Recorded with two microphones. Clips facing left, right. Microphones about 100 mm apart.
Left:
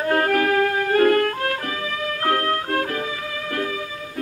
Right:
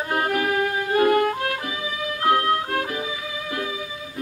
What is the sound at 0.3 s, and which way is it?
Music, 45° left (ahead or behind).